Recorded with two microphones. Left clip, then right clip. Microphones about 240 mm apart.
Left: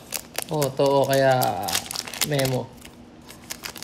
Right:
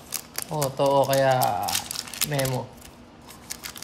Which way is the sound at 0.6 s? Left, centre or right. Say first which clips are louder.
Left 1 dB; left.